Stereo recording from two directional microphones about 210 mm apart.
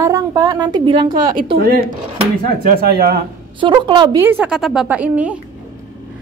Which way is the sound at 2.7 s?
45° right (ahead or behind).